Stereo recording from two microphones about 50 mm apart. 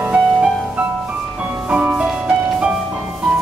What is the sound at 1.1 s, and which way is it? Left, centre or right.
Music, right.